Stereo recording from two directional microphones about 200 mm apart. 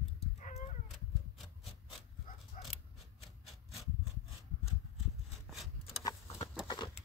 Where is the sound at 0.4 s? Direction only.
35° left (ahead or behind).